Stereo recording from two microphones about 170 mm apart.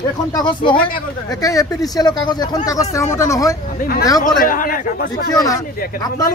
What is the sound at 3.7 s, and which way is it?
Speech, 60° left (ahead or behind).